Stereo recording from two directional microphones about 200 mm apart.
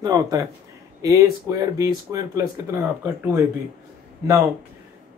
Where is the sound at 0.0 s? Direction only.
20° right (ahead or behind).